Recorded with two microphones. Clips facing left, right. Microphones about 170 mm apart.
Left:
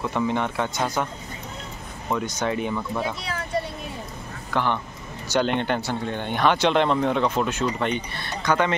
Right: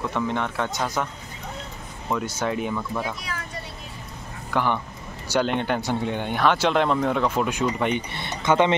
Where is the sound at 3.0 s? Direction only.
30° left (ahead or behind).